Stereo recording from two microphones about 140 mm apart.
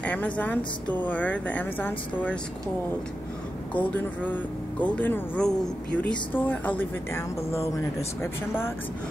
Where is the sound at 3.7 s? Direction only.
10° left (ahead or behind).